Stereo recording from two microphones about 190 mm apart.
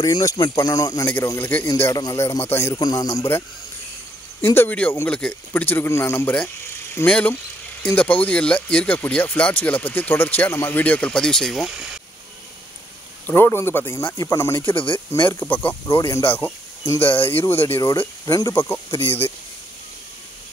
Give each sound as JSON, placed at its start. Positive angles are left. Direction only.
{"t": 0.0, "sound": "speech", "side_deg": 20}
{"t": 13.3, "sound": "speech", "side_deg": 10}
{"t": 17.0, "sound": "speech", "side_deg": 30}
{"t": 17.3, "sound": "speech", "side_deg": 10}